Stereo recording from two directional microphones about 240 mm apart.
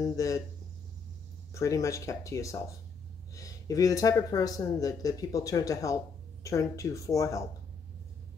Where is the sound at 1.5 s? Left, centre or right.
Centre.